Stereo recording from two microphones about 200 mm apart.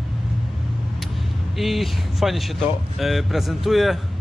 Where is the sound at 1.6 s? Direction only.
Centre (ahead or behind).